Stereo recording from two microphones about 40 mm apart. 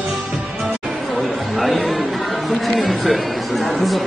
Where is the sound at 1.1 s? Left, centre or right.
Centre.